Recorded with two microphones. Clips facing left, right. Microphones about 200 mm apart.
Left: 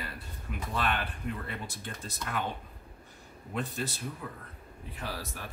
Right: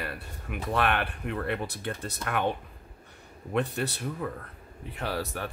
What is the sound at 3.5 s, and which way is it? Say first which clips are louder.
Speech: right 6 dB; 65° right (ahead or behind).